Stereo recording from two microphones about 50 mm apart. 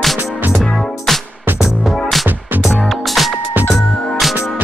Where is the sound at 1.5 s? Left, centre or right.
Centre.